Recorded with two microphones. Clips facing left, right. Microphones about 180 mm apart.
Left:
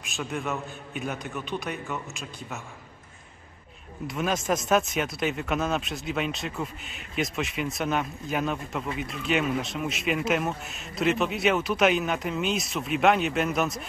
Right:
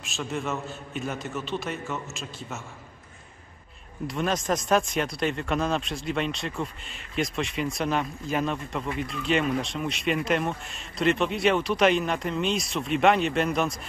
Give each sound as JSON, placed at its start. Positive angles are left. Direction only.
{"t": 0.0, "sound": "speech", "side_deg": 0}
{"t": 4.1, "sound": "speech", "side_deg": 5}